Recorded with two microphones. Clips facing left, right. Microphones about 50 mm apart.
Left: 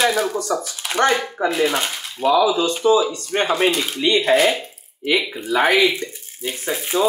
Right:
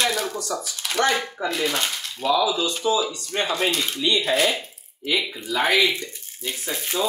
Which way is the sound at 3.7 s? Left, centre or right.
Centre.